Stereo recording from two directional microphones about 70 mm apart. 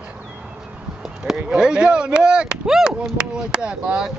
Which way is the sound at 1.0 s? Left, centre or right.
Centre.